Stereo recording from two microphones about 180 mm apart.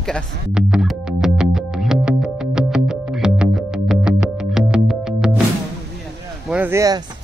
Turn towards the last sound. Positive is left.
turn(degrees=-20)  # may be behind; listen again after turning